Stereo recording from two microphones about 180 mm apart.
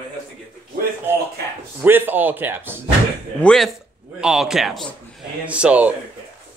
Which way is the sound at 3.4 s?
Centre (ahead or behind).